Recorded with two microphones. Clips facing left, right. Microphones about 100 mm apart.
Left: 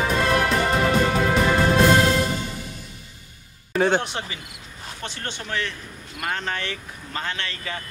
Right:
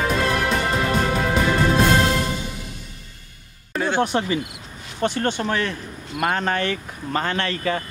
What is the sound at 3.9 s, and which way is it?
Speech, 50° right (ahead or behind).